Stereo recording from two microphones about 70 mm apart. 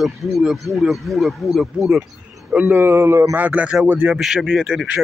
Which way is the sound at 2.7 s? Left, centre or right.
Right.